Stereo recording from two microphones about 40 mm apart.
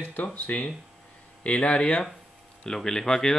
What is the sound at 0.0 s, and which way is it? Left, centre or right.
Speech, left.